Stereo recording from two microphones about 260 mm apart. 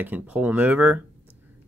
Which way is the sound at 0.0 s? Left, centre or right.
Centre.